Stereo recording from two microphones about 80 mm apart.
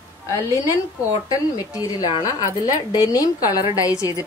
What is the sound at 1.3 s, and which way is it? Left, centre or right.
Speech, left.